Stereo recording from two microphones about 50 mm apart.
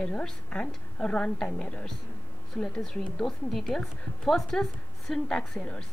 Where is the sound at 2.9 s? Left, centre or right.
Centre.